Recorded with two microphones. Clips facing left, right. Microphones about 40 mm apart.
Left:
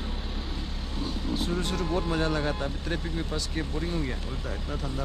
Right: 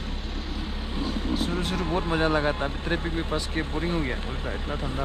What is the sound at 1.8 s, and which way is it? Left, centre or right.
Speech, right.